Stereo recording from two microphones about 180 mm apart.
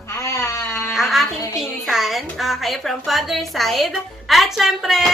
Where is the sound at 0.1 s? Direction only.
15° left (ahead or behind).